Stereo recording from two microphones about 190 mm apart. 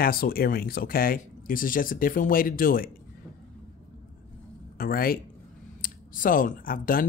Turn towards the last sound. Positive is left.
turn(degrees=50)  # may be behind; listen again after turning